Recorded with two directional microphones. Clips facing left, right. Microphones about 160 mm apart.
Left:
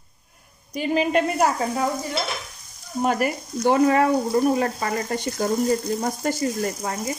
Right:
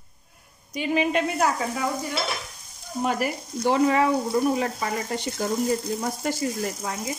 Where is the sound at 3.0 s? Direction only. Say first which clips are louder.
Left 3 dB; 50° left (ahead or behind).